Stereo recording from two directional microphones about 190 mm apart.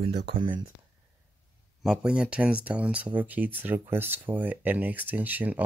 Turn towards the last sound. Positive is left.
turn(degrees=-10)  # may be behind; listen again after turning